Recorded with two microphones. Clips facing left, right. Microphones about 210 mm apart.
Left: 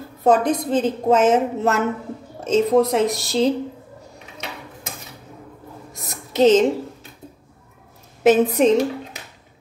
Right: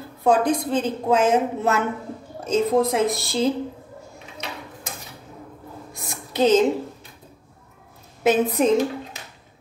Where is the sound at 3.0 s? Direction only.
45° left (ahead or behind).